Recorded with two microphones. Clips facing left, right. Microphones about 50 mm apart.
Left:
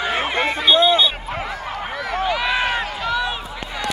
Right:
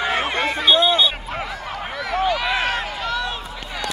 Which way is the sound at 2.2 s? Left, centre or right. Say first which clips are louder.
Left 1 dB; centre.